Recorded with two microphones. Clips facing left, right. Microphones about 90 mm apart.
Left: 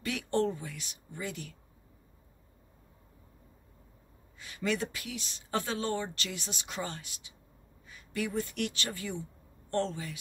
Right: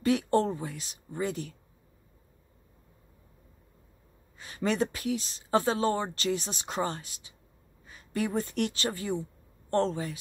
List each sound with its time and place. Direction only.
0.0 s speech: 35° right (ahead or behind)
4.4 s speech: 35° right (ahead or behind)
7.8 s a sound: 35° right (ahead or behind)
8.3 s speech: 35° right (ahead or behind)